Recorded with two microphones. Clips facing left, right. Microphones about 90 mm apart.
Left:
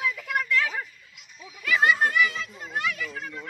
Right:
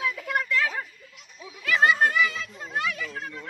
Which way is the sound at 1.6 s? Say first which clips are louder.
Right 1 dB; 30° right (ahead or behind).